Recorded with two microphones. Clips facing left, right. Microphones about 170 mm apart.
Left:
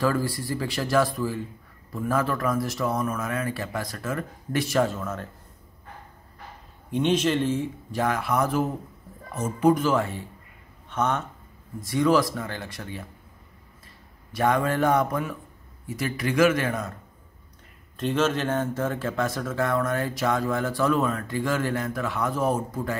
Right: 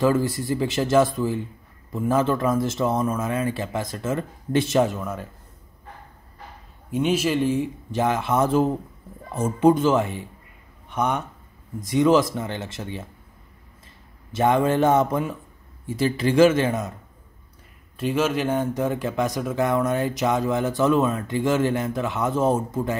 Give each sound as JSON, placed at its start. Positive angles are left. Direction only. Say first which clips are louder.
{"t": 0.0, "sound": "speech", "louder": "right 4 dB", "side_deg": -20}
{"t": 6.9, "sound": "speech", "louder": "right 1 dB", "side_deg": -5}
{"t": 14.3, "sound": "speech", "louder": "right 4 dB", "side_deg": -25}
{"t": 17.9, "sound": "speech", "louder": "right 2 dB", "side_deg": -10}